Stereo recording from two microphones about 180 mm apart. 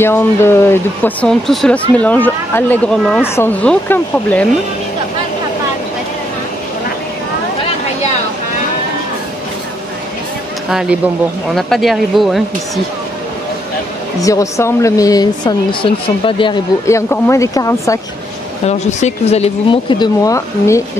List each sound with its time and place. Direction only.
0.0 s speech: 15° left (ahead or behind)
10.7 s speech: centre (ahead or behind)
14.2 s speech: 15° left (ahead or behind)
16.8 s speech: 15° left (ahead or behind)
18.7 s speech: 40° left (ahead or behind); by 20.8 s 15° left (ahead or behind)